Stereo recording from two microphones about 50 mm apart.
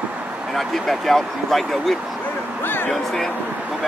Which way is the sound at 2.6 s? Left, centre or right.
Left.